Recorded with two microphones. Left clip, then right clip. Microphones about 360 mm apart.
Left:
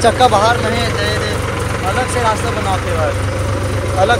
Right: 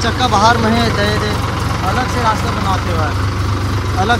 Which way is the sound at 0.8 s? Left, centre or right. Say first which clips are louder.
Right 2 dB; right.